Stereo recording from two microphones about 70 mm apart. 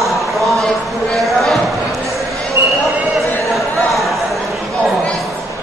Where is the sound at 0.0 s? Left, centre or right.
Centre.